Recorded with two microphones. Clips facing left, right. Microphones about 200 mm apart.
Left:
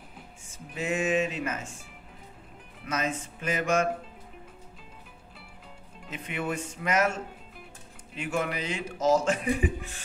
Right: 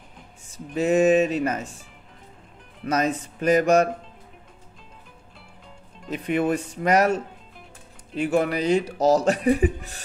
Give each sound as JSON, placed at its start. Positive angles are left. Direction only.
{"t": 0.7, "sound": "speech", "side_deg": -40}
{"t": 2.8, "sound": "speech", "side_deg": -40}
{"t": 6.0, "sound": "speech", "side_deg": -40}